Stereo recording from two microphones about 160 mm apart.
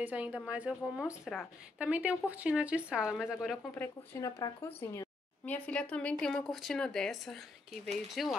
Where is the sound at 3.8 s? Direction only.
20° left (ahead or behind).